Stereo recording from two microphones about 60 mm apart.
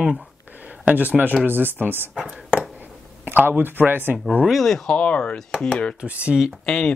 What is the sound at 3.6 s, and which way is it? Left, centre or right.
Speech, right.